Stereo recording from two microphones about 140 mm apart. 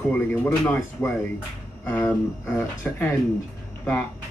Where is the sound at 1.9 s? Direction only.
15° left (ahead or behind).